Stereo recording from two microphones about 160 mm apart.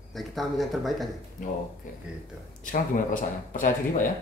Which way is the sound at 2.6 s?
55° left (ahead or behind).